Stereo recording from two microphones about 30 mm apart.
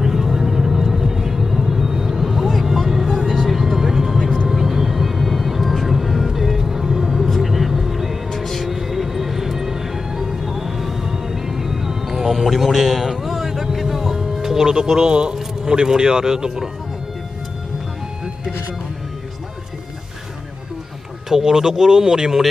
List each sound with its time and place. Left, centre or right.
0.0 s vehicle: centre
1.7 s rumble: centre
2.9 s vehicle: centre
3.4 s music: centre
4.5 s vehicle: centre
7.2 s music: centre
8.3 s music: centre
14.8 s a sound: right
15.7 s speech: right
21.3 s speech: centre